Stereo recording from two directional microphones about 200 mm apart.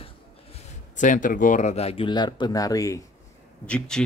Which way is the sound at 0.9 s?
40° left (ahead or behind).